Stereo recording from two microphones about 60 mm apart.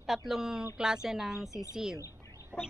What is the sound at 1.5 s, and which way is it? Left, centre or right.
Speech, left.